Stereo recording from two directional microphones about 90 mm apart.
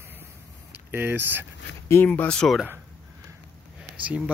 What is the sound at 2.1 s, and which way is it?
Speech, 15° left (ahead or behind).